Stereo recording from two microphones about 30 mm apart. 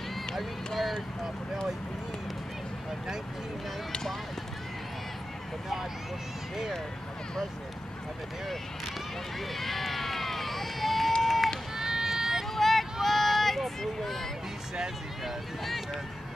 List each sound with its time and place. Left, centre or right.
9.5 s run: centre
11.7 s run: centre
12.5 s a sound: centre
15.6 s speech: centre